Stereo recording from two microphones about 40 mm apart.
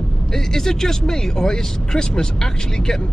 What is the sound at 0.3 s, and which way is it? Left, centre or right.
Speech, centre.